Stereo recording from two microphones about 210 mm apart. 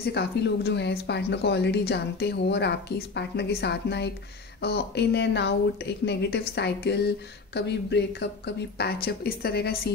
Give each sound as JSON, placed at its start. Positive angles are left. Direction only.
{"t": 0.0, "sound": "speech", "side_deg": 50}